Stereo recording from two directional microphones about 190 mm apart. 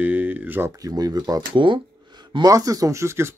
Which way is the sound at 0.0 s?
10° right (ahead or behind).